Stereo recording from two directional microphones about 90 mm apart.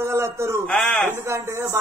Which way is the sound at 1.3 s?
30° right (ahead or behind).